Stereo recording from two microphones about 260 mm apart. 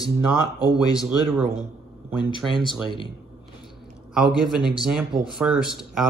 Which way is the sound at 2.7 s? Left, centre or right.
Centre.